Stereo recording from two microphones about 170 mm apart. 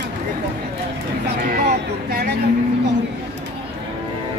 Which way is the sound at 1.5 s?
65° right (ahead or behind).